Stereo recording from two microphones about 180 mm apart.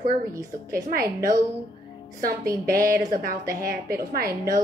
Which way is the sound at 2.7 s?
55° right (ahead or behind).